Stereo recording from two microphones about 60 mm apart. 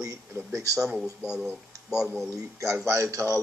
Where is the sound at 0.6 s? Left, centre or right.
Right.